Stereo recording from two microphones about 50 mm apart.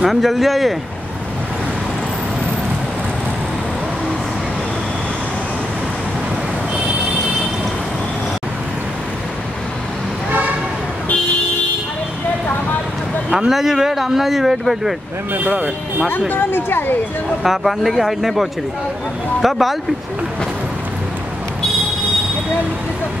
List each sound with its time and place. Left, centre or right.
0.0 s speech: centre
13.5 s speech: centre
15.3 s speech: right
16.1 s speech: left
17.4 s speech: centre